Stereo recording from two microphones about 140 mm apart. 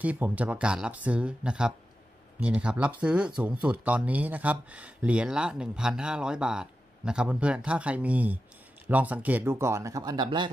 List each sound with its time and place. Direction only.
0.0 s speech: 10° right (ahead or behind); by 10.5 s 35° right (ahead or behind)